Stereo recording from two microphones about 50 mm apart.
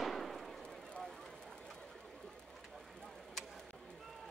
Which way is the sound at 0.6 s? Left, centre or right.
Centre.